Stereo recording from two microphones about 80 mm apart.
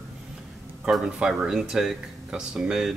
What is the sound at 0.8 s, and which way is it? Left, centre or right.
Speech, centre.